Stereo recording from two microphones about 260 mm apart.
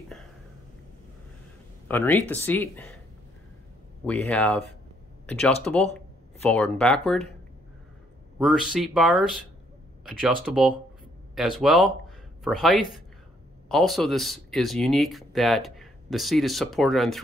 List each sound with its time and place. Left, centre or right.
1.9 s speech: centre
4.0 s speech: centre
8.4 s speech: centre